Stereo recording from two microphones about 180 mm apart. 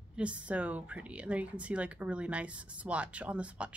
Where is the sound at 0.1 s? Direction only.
5° right (ahead or behind).